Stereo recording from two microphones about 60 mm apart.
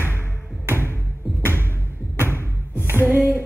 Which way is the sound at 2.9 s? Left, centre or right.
Right.